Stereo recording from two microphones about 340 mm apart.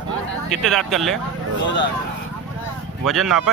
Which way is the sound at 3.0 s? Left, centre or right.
Centre.